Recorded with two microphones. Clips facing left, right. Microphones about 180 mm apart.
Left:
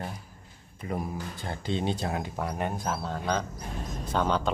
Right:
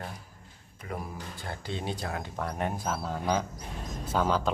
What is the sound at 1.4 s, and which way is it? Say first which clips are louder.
Speech: left 5 dB; 20° left (ahead or behind).